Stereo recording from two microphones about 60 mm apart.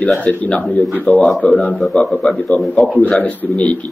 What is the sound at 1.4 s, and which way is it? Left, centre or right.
Speech, left.